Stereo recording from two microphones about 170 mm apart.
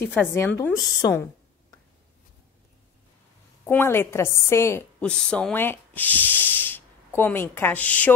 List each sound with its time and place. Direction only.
0.0 s a woman's voice: 10° left (ahead or behind)
3.6 s a woman's voice: 15° left (ahead or behind)
5.1 s speech: 5° left (ahead or behind)